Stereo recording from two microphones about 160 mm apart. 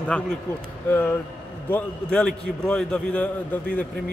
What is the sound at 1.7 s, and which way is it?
A man's voice, 5° left (ahead or behind).